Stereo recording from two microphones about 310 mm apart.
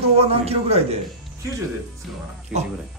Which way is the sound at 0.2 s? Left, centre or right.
Centre.